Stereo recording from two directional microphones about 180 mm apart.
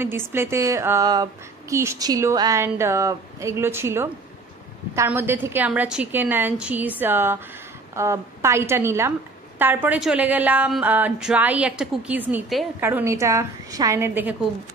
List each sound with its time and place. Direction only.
0.0 s speech: 15° right (ahead or behind)